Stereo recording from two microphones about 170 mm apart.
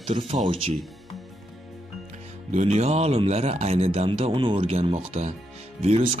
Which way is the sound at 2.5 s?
40° right (ahead or behind).